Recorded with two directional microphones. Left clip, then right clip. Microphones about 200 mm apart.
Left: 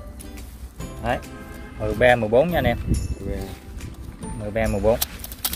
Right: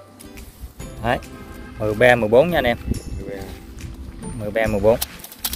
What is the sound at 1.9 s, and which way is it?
Speech, 65° right (ahead or behind).